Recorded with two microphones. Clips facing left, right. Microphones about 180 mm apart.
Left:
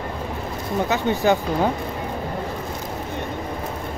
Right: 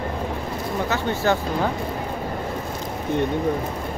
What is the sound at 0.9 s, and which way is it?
Speech, 15° left (ahead or behind).